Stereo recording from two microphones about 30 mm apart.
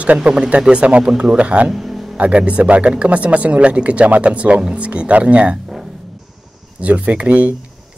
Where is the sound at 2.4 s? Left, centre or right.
Right.